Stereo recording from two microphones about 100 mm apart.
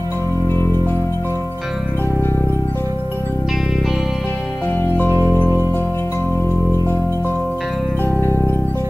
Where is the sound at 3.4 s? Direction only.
5° right (ahead or behind).